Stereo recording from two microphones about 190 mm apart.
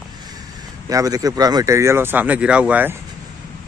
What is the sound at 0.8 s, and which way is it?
Speech, 20° right (ahead or behind).